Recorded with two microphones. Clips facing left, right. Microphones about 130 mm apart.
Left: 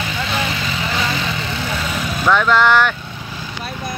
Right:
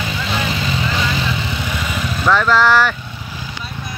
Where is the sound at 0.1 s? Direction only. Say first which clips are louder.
Even; 10° right (ahead or behind).